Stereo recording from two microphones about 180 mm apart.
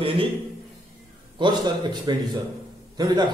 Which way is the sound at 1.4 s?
25° right (ahead or behind).